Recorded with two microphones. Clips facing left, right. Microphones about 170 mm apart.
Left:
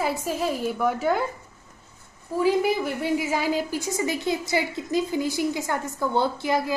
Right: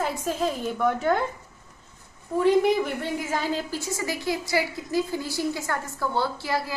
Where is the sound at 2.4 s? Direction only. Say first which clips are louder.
Right 2 dB; 5° left (ahead or behind).